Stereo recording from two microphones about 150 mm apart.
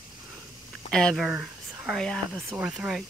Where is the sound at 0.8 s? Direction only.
5° left (ahead or behind).